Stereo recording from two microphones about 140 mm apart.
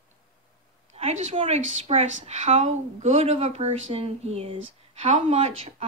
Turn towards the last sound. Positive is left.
turn(degrees=-50)  # may be behind; listen again after turning